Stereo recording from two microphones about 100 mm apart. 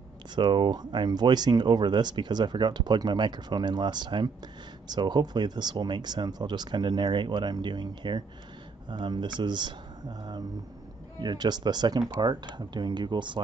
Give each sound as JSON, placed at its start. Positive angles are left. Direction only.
{"t": 0.4, "sound": "speech", "side_deg": -50}